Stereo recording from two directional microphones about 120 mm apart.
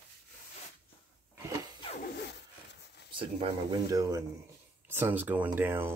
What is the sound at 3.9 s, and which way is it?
Speech, 30° right (ahead or behind).